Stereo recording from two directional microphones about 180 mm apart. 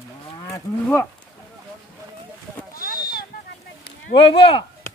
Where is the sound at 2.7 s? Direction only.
55° left (ahead or behind).